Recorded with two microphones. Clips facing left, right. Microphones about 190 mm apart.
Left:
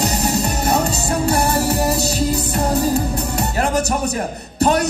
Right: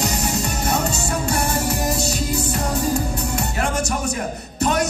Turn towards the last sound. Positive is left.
turn(degrees=35)  # may be behind; listen again after turning